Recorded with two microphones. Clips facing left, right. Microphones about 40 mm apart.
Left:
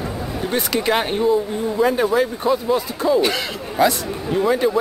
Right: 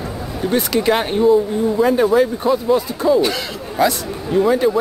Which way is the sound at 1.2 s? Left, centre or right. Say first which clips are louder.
Right 5 dB; centre.